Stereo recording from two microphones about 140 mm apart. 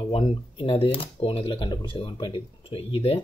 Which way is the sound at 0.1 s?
40° left (ahead or behind).